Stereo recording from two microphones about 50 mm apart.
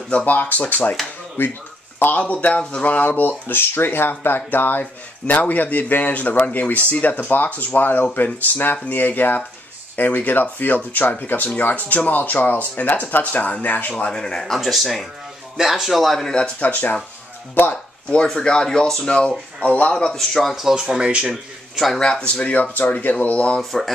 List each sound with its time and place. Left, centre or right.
0.1 s speech: left
14.1 s speech: centre
14.4 s speech: centre
16.5 s speech: left
18.2 s speech: centre
20.1 s speech: centre
20.5 s a man's voice: centre
21.9 s speech: centre
22.2 s speech: left
22.5 s speech: left
23.6 s speech: centre